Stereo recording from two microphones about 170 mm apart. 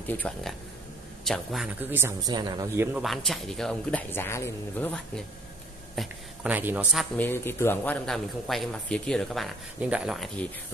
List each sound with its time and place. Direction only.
0.1 s a man's voice: 5° left (ahead or behind)
1.8 s speech: 10° right (ahead or behind)
3.0 s a man's voice: centre (ahead or behind)
4.1 s speech: 15° left (ahead or behind)
5.9 s speech: 10° right (ahead or behind)
7.2 s a man's voice: 15° left (ahead or behind)